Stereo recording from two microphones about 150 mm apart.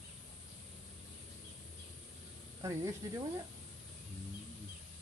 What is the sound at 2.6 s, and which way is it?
Speech, 25° right (ahead or behind).